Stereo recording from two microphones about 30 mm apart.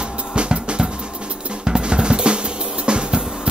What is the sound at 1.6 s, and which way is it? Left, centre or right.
Drum, right.